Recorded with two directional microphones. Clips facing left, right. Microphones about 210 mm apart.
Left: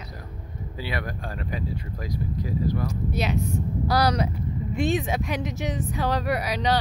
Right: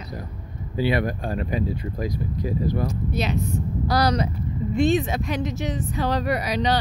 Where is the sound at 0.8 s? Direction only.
20° right (ahead or behind).